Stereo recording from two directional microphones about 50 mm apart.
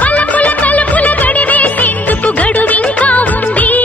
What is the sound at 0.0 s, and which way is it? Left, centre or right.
Music of bollywood, left.